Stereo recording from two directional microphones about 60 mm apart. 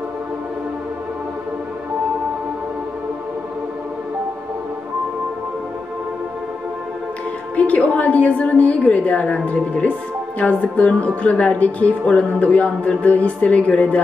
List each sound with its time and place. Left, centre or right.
7.5 s speech: left